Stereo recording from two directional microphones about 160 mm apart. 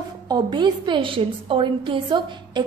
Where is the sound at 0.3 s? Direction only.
25° right (ahead or behind).